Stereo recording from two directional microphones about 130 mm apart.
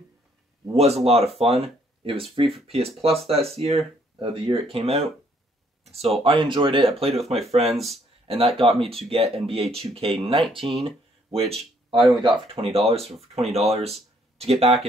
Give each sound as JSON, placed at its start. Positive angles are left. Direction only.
{"t": 0.7, "sound": "speech", "side_deg": -55}
{"t": 6.2, "sound": "speech", "side_deg": -40}
{"t": 7.6, "sound": "speech", "side_deg": 0}
{"t": 8.3, "sound": "speech", "side_deg": -45}